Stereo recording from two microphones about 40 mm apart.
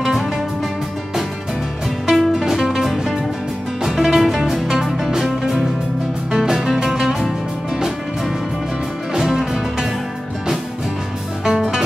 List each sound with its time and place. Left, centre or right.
2.0 s music: centre
9.1 s music: centre
11.4 s music: centre